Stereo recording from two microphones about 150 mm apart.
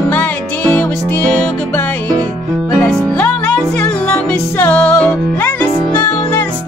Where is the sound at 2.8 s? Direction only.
10° left (ahead or behind).